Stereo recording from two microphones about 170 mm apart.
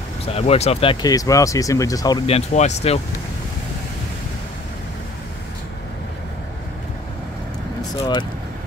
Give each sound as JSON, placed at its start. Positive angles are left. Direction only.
{"t": 0.2, "sound": "speech", "side_deg": 35}
{"t": 1.0, "sound": "speech", "side_deg": 20}
{"t": 2.2, "sound": "speech", "side_deg": 40}
{"t": 8.0, "sound": "speech", "side_deg": 25}